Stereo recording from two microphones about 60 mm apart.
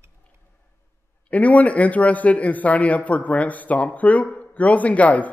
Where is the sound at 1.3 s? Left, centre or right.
Left.